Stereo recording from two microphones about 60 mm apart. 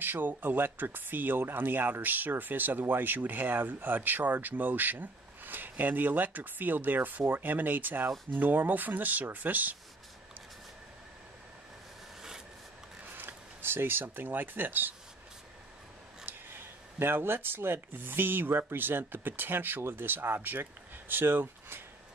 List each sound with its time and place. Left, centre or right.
0.0 s speech: right
13.1 s speech: right
16.3 s speech: right